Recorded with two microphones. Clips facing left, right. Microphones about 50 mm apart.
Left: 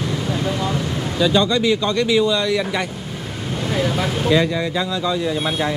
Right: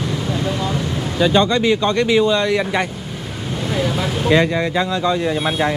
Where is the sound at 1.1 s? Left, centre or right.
Right.